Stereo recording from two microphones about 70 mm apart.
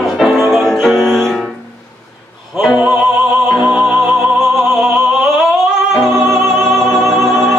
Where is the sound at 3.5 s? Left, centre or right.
Centre.